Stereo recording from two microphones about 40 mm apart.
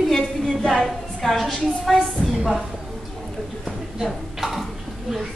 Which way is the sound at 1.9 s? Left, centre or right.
Centre.